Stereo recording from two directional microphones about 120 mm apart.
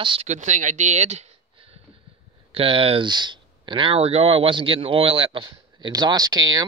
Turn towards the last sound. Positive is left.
turn(degrees=-35)  # may be behind; listen again after turning